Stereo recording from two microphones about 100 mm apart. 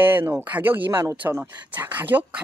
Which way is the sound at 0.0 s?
20° right (ahead or behind).